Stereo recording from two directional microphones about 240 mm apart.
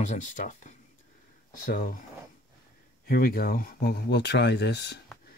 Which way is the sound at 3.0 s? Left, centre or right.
Left.